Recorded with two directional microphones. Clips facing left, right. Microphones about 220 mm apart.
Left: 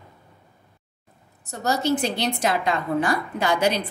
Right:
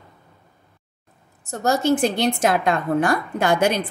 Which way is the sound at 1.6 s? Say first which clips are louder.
Right 4 dB; 50° right (ahead or behind).